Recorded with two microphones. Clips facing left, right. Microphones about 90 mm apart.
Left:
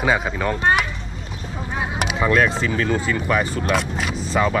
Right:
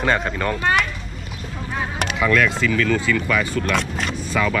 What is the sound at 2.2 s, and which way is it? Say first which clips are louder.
Speech: even; 35° left (ahead or behind).